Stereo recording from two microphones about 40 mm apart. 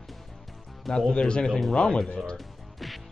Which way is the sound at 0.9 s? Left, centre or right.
Centre.